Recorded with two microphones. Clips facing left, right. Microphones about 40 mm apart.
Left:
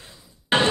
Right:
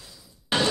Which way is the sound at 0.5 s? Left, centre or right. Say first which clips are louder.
Left 4 dB; left.